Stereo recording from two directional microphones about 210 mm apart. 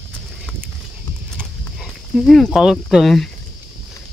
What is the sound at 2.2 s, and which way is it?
Speech, centre (ahead or behind).